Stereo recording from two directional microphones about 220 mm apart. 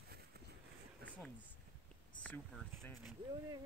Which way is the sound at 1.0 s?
5° left (ahead or behind).